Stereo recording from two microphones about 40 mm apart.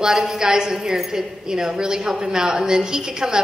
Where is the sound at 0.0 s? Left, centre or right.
Centre.